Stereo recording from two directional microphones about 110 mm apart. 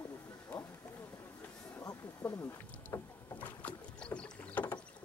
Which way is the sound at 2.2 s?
10° left (ahead or behind).